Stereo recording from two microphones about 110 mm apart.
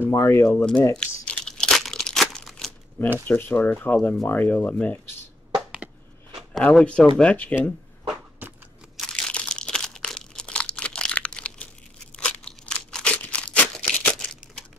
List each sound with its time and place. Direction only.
0.1 s speech: 25° left (ahead or behind)
0.9 s crumpling: 5° left (ahead or behind)
3.3 s speech: 20° left (ahead or behind)
6.5 s speech: 5° left (ahead or behind)
8.1 s a sound: 15° right (ahead or behind)
8.9 s crunch: 5° left (ahead or behind)
12.2 s a sound: 10° left (ahead or behind)